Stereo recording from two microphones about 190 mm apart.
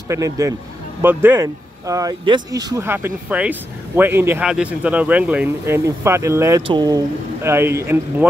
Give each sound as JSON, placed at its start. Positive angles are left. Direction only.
{"t": 0.1, "sound": "speech", "side_deg": -15}
{"t": 7.4, "sound": "speech", "side_deg": -15}